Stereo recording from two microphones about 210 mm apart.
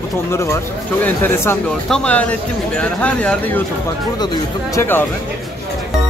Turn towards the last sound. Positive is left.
turn(degrees=10)  # may be behind; listen again after turning